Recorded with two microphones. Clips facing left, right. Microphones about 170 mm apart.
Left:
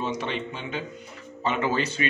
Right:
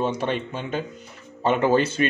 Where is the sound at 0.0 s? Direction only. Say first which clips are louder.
Right 5 dB; 50° right (ahead or behind).